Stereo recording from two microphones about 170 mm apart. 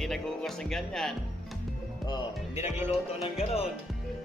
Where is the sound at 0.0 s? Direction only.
Centre (ahead or behind).